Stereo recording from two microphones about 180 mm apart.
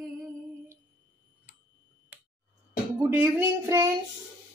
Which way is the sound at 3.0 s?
10° right (ahead or behind).